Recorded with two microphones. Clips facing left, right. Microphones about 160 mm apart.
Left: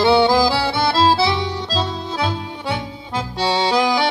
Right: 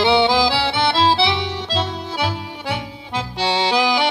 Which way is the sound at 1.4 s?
70° right (ahead or behind).